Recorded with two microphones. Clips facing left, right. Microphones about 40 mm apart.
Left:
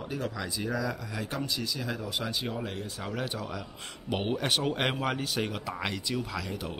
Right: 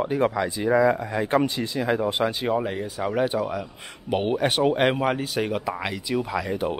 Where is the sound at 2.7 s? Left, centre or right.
Centre.